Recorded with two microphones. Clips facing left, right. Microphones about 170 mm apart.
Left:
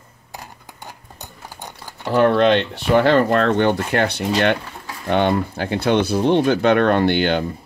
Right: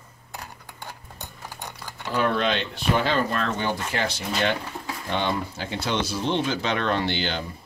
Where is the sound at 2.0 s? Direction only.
65° left (ahead or behind).